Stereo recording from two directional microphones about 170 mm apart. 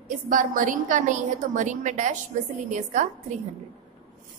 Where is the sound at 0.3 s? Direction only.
50° right (ahead or behind).